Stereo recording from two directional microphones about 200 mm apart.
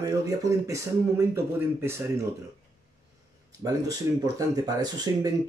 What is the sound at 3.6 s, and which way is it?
Speech, 20° right (ahead or behind).